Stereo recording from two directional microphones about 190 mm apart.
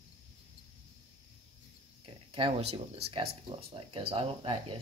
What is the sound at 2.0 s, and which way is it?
Speech, 25° right (ahead or behind).